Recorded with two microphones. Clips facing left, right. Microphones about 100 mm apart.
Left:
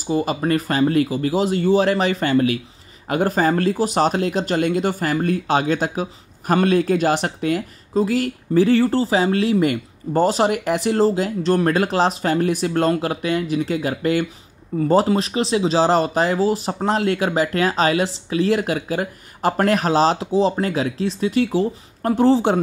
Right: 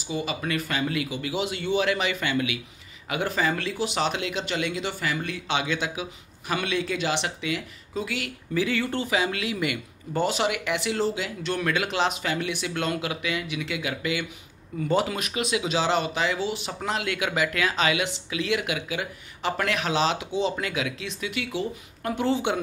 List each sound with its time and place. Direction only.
0.0 s speech: 45° left (ahead or behind)